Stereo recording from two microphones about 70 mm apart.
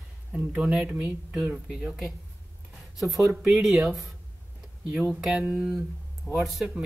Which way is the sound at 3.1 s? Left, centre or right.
Right.